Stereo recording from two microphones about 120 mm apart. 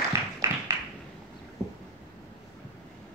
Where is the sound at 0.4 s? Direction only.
25° right (ahead or behind).